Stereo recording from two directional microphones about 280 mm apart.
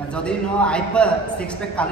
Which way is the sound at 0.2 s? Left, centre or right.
Centre.